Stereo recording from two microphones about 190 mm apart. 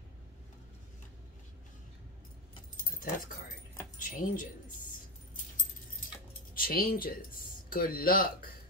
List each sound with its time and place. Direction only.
4.0 s speech: 45° left (ahead or behind)
6.5 s speech: 50° left (ahead or behind)